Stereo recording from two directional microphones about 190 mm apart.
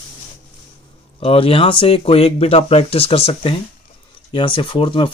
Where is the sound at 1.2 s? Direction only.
30° left (ahead or behind).